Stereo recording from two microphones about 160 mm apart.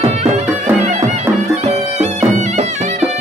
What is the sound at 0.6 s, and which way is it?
Music, 45° right (ahead or behind).